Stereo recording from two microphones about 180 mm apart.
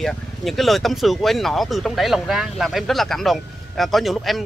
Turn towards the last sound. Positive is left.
turn(degrees=0)  # may be behind; listen again after turning